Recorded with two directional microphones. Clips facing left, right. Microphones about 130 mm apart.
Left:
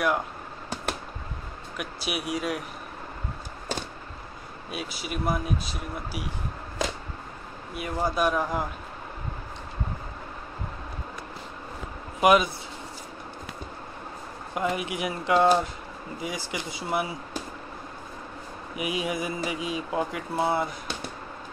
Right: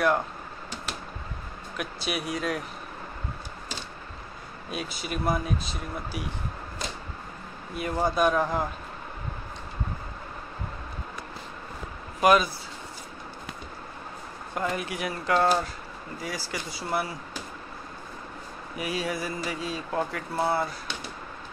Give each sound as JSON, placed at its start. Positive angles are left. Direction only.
{"t": 1.8, "sound": "speech", "side_deg": 5}
{"t": 4.6, "sound": "speech", "side_deg": 5}
{"t": 7.7, "sound": "speech", "side_deg": 5}
{"t": 12.2, "sound": "speech", "side_deg": 15}
{"t": 14.5, "sound": "speech", "side_deg": 15}
{"t": 18.8, "sound": "speech", "side_deg": 15}